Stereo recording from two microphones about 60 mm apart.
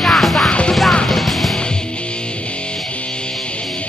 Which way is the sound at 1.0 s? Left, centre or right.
Centre.